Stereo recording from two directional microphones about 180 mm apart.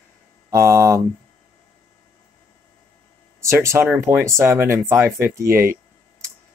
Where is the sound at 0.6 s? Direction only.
15° right (ahead or behind).